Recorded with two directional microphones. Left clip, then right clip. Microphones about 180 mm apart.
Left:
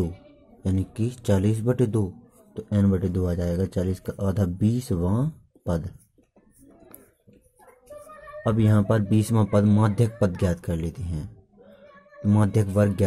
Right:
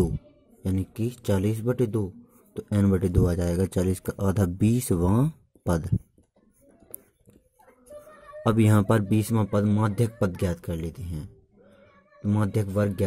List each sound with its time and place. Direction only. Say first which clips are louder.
0.6 s a man's voice: left 2 dB; 20° right (ahead or behind)
2.5 s speech: even; 35° right (ahead or behind)
8.4 s speech: right 1 dB; 40° right (ahead or behind)
9.2 s speech: left 3 dB; 20° right (ahead or behind)